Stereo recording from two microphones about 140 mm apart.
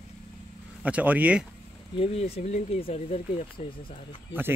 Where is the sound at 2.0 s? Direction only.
45° left (ahead or behind).